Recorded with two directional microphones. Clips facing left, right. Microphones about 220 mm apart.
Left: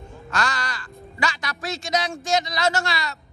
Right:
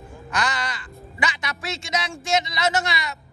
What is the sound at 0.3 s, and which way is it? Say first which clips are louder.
Crow: even; 20° right (ahead or behind).